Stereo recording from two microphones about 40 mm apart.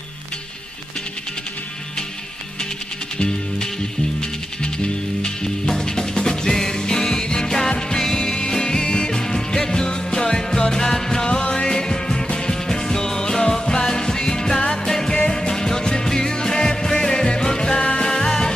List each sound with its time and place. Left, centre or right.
3.2 s music: centre
17.7 s music: left
18.0 s music: centre